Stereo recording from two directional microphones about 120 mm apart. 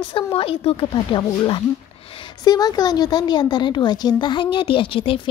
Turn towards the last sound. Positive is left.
turn(degrees=50)  # may be behind; listen again after turning